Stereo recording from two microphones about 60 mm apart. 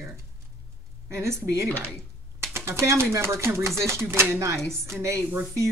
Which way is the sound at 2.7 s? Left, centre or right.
Right.